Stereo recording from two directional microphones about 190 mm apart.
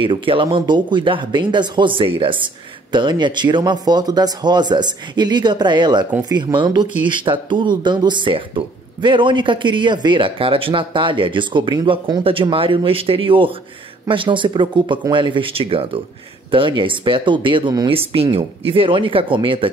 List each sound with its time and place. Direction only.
0.0 s speech: 25° right (ahead or behind)